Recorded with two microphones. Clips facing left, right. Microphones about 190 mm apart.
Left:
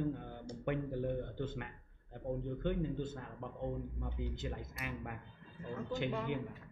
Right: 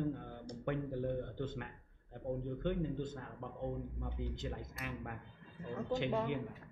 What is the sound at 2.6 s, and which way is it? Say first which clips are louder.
Speech: left 1 dB; 5° left (ahead or behind).